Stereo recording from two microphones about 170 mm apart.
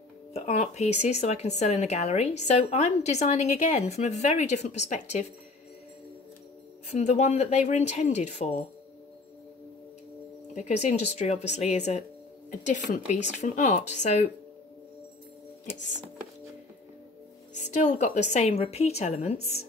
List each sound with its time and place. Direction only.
0.3 s speech: 40° left (ahead or behind)
6.9 s speech: 40° left (ahead or behind)
10.5 s a woman's voice: 45° left (ahead or behind)
17.7 s speech: 45° left (ahead or behind)